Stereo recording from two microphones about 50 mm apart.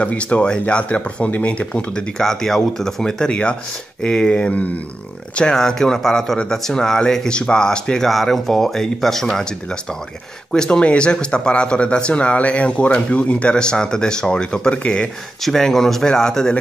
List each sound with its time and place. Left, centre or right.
0.0 s speech: left
5.3 s a man's voice: centre
8.1 s speech: centre
10.5 s speech: centre
15.4 s a man's voice: centre